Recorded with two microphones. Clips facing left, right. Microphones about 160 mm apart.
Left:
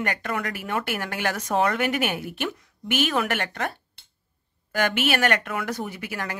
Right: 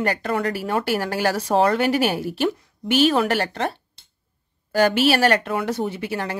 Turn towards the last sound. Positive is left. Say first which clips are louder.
# right 6 dB
turn(degrees=-30)  # may be behind; listen again after turning